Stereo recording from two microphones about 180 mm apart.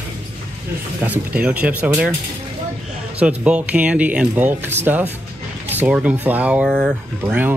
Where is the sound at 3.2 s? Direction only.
5° right (ahead or behind).